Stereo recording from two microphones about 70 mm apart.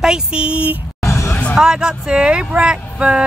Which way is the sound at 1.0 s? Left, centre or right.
Left.